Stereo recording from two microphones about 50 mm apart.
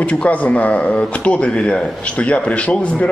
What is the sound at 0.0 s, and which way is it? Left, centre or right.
Speech, left.